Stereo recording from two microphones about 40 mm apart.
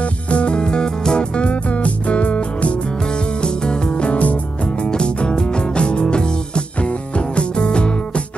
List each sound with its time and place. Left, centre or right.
0.0 s music: left
3.4 s music: left
4.8 s music: left